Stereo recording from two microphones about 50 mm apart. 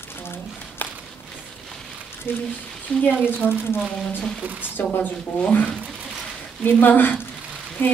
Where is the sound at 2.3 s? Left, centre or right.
Left.